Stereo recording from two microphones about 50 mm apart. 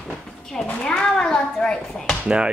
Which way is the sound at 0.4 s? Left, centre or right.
Centre.